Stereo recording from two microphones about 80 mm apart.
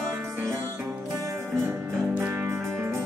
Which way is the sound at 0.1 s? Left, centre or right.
Right.